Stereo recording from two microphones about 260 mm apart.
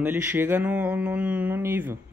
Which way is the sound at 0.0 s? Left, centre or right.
Centre.